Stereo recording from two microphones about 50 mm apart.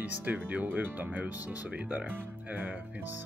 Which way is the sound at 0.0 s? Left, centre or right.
Right.